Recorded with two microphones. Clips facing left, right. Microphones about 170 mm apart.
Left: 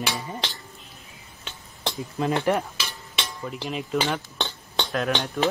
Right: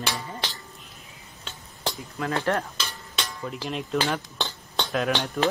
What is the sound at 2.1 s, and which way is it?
Speech, 20° left (ahead or behind).